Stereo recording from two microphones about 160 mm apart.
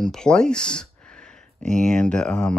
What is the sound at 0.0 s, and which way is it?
Speech, 5° left (ahead or behind).